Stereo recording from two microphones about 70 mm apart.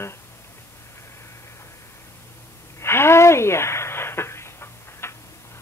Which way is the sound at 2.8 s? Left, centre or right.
Left.